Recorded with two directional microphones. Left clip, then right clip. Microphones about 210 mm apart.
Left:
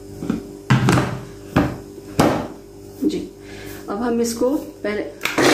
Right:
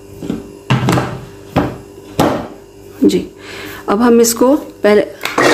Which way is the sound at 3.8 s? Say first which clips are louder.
Right 12 dB; 55° right (ahead or behind).